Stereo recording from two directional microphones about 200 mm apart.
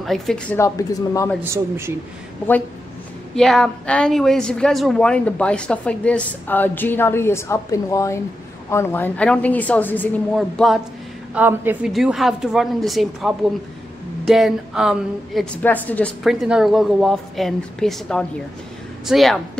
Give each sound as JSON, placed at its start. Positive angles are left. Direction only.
{"t": 0.0, "sound": "a woman's voice", "side_deg": 0}
{"t": 0.6, "sound": "a woman's voice", "side_deg": 15}
{"t": 1.4, "sound": "speech", "side_deg": -15}
{"t": 3.3, "sound": "a woman's voice", "side_deg": 0}